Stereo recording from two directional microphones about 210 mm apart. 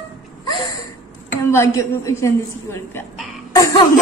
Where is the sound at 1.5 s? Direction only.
15° left (ahead or behind).